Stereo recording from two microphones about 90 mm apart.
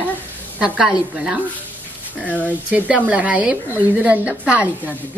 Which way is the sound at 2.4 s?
15° right (ahead or behind).